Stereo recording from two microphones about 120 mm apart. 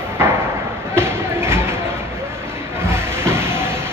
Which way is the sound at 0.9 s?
20° right (ahead or behind).